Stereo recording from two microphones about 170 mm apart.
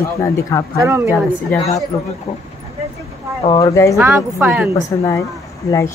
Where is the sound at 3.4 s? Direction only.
20° left (ahead or behind).